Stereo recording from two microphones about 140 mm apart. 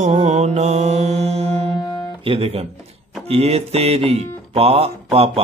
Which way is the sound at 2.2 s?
45° right (ahead or behind).